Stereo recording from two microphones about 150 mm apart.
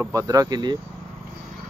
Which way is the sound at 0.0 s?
20° right (ahead or behind).